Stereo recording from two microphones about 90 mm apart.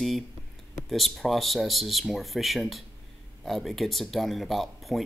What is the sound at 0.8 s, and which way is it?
Speech, centre (ahead or behind).